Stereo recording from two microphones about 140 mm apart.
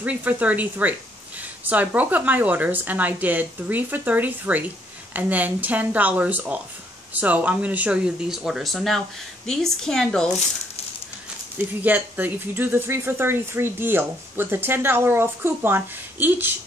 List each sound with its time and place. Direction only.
0.0 s a woman's voice: 10° right (ahead or behind); by 10.3 s 5° left (ahead or behind)
11.5 s speech: 10° right (ahead or behind)